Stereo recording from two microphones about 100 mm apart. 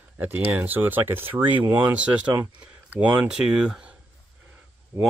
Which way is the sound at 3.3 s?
5° right (ahead or behind).